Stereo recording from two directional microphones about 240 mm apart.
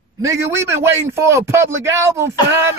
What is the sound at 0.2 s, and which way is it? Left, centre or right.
A man's voice, centre.